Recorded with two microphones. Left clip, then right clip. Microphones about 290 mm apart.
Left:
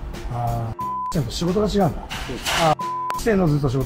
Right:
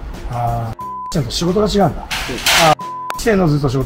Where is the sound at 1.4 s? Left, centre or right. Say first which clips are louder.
Right 6 dB; centre.